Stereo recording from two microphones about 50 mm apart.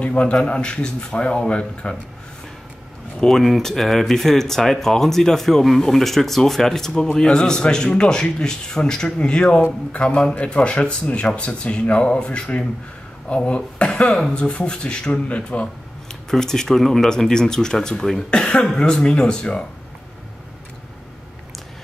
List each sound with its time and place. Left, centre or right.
0.0 s speech: left
3.2 s speech: centre; by 15.7 s left
16.3 s speech: centre